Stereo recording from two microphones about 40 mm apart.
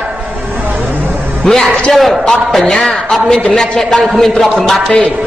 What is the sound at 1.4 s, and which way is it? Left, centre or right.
Speech, centre.